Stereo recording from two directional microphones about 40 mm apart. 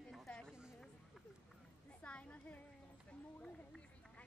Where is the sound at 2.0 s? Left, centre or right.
Left.